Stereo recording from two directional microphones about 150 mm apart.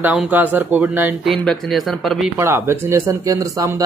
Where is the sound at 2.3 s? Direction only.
15° right (ahead or behind).